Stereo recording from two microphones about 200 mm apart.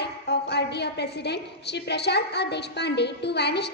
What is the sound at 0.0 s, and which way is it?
A woman's voice, 55° left (ahead or behind).